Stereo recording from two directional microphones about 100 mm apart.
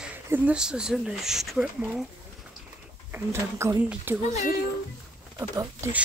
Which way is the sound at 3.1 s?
25° right (ahead or behind).